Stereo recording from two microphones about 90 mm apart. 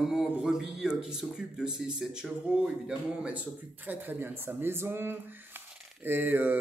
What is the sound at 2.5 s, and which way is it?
A man's voice, 15° right (ahead or behind).